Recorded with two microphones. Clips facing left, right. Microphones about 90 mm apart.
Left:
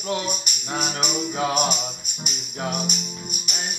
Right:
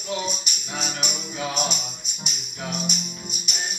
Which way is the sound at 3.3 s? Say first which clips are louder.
Left 2 dB; 55° left (ahead or behind).